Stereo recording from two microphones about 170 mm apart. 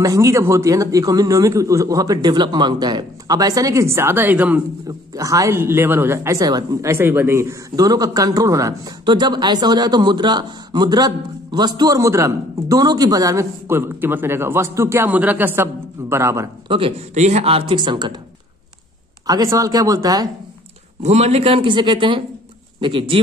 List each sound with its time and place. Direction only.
0.0 s speech: 20° right (ahead or behind)
16.6 s speech: 30° right (ahead or behind)
17.1 s speech: 45° right (ahead or behind); by 18.1 s 25° right (ahead or behind)
19.2 s speech: 20° right (ahead or behind)
21.0 s speech: 40° right (ahead or behind)